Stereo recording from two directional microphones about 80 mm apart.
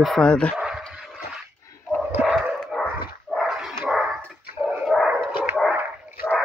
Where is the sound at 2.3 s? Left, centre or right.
Centre.